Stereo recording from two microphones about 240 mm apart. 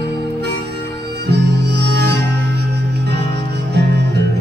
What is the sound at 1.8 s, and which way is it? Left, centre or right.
Music, right.